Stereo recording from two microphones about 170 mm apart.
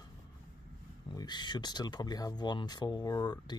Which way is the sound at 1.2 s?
25° left (ahead or behind).